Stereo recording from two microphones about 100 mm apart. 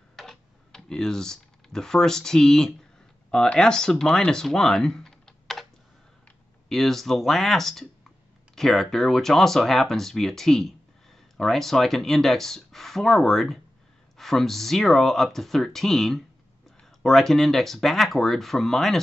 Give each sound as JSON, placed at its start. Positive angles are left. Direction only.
{"t": 0.1, "sound": "speech", "side_deg": 5}
{"t": 6.7, "sound": "speech", "side_deg": 5}